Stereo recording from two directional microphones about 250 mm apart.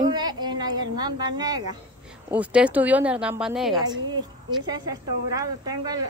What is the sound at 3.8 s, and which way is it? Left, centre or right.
A woman's voice, centre.